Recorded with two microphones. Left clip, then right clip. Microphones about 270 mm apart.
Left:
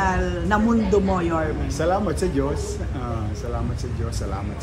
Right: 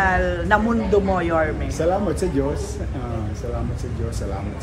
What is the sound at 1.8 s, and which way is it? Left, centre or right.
Speech, centre.